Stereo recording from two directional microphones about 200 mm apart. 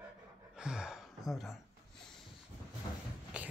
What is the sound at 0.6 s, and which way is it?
Gasp, 5° right (ahead or behind).